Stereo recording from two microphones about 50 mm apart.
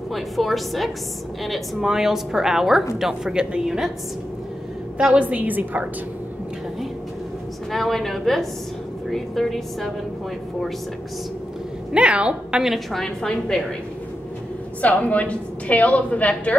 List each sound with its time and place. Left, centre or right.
0.1 s a woman's voice: centre
4.9 s a woman's voice: centre
5.2 s a woman's voice: right
7.7 s a woman's voice: centre
11.9 s a woman's voice: right
12.6 s a woman's voice: centre
14.8 s a woman's voice: left